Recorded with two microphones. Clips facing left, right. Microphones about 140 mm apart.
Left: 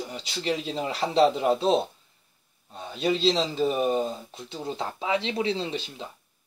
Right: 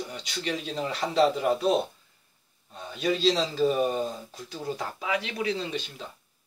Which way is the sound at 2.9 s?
25° left (ahead or behind).